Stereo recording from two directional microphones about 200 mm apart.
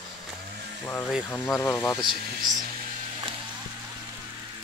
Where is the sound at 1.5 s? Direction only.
15° left (ahead or behind).